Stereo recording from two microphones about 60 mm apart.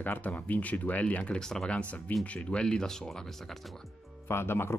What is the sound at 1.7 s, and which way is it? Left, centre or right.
Speech, left.